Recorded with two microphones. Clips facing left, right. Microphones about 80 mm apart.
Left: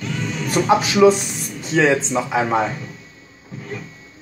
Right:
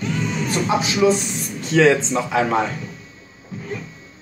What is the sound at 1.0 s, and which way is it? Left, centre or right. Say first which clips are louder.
Speech: left 4 dB; left.